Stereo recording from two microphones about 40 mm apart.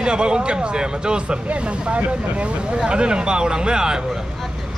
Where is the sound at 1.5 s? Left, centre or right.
Right.